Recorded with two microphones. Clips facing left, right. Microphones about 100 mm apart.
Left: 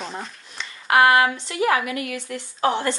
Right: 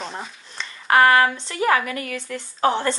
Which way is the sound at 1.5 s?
35° right (ahead or behind).